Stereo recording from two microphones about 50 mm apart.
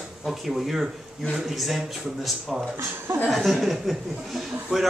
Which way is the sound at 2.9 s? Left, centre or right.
Right.